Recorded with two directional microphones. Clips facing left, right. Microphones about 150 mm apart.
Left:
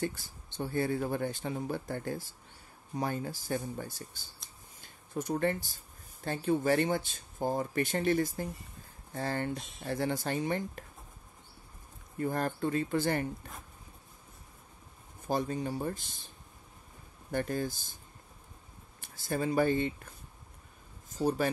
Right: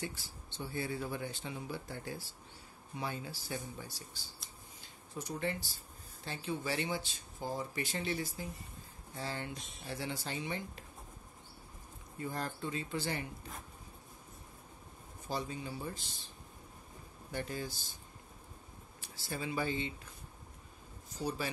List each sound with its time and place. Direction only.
0.0 s speech: 50° left (ahead or behind)
12.2 s speech: 55° left (ahead or behind)
15.2 s speech: 50° left (ahead or behind)
17.3 s speech: 50° left (ahead or behind)
18.9 s speech: 50° left (ahead or behind)
21.2 s speech: 50° left (ahead or behind)